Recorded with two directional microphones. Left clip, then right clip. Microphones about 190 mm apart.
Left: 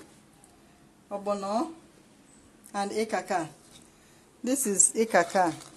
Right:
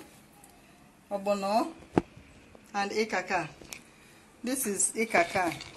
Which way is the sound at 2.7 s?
40° left (ahead or behind).